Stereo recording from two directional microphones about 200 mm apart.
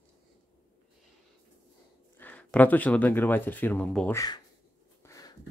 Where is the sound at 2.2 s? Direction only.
5° left (ahead or behind).